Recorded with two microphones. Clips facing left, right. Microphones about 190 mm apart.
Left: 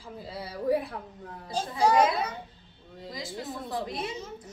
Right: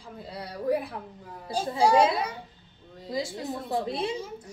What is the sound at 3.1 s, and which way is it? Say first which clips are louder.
A woman's voice: right 6 dB; 25° right (ahead or behind).